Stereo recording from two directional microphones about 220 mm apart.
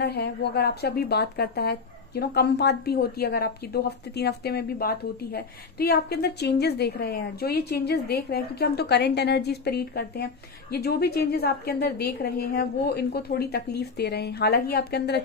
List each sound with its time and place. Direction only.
0.0 s a woman's voice: 45° left (ahead or behind)